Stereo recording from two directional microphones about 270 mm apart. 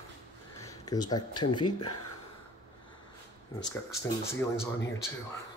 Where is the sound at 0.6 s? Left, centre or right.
Centre.